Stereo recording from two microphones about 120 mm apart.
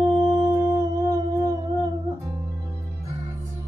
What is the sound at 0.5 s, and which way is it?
Music, 20° right (ahead or behind).